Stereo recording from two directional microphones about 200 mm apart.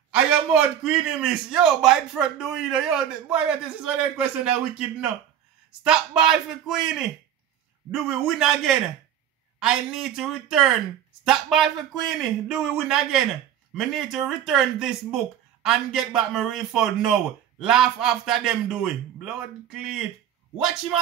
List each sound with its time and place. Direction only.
0.1 s a man's voice: 5° right (ahead or behind)
8.3 s a man's voice: centre (ahead or behind)